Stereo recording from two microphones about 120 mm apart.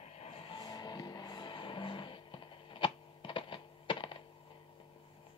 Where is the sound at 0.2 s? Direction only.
45° left (ahead or behind).